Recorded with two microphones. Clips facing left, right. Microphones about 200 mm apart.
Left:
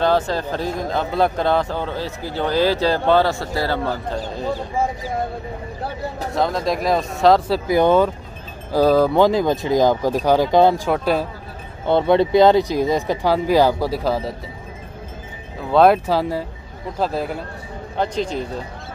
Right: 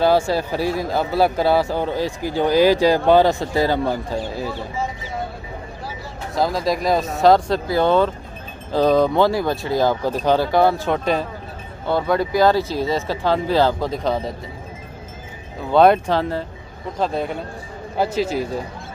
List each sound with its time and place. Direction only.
0.0 s speech: 10° right (ahead or behind)
4.7 s speech: 50° left (ahead or behind)
6.3 s speech: centre (ahead or behind)
7.6 s speech: 15° left (ahead or behind)
10.9 s speech: 5° left (ahead or behind)
11.8 s speech: 25° left (ahead or behind); by 14.3 s 5° left (ahead or behind)
15.7 s speech: centre (ahead or behind)